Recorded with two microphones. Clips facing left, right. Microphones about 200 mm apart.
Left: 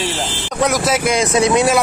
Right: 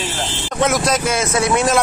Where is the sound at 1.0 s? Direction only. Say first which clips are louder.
Left 3 dB; 15° left (ahead or behind).